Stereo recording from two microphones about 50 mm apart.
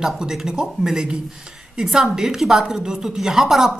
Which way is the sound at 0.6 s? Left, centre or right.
Centre.